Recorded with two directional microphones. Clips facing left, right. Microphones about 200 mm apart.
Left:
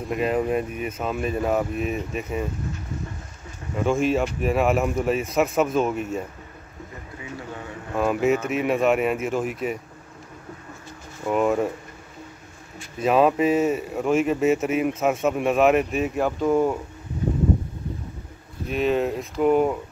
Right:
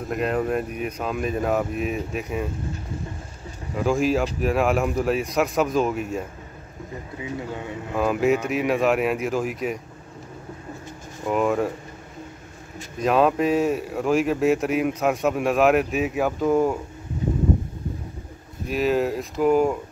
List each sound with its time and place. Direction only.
0.1 s speech: centre (ahead or behind)
3.7 s speech: centre (ahead or behind)
7.2 s speech: 15° right (ahead or behind)
7.9 s speech: centre (ahead or behind)
11.2 s speech: centre (ahead or behind)
13.0 s speech: centre (ahead or behind)
18.7 s speech: centre (ahead or behind)